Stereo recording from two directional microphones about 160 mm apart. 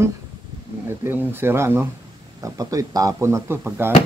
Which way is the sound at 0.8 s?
15° right (ahead or behind).